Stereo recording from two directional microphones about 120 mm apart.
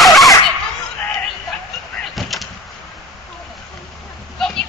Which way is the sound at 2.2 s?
Centre (ahead or behind).